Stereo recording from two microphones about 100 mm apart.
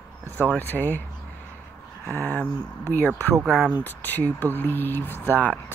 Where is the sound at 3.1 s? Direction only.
25° right (ahead or behind).